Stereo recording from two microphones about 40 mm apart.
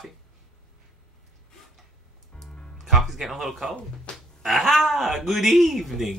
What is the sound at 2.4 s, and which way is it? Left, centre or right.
Music, centre.